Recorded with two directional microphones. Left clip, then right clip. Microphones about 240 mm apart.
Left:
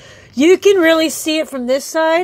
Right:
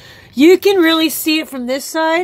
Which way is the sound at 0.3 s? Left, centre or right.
Centre.